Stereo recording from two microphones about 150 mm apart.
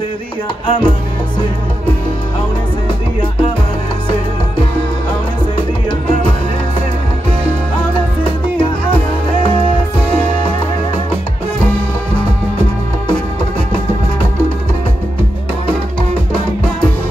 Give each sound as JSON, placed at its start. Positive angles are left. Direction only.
{"t": 0.7, "sound": "music", "side_deg": 35}